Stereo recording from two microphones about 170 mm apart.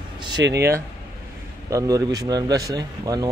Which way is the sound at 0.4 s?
90° right.